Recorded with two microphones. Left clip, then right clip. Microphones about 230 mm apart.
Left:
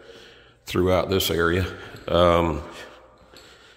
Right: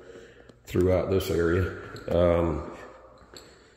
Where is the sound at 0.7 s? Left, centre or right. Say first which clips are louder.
Left 3 dB; centre.